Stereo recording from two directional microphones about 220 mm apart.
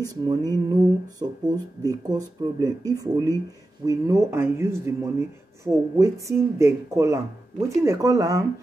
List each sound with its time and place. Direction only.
0.0 s speech: 15° right (ahead or behind)